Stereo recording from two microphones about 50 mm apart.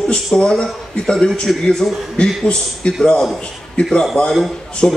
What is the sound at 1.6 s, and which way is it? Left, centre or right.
A man's voice, centre.